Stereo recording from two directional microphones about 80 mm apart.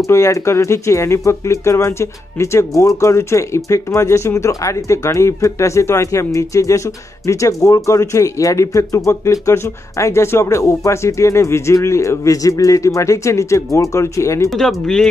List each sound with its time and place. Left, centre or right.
0.0 s speech: left
14.5 s speech: centre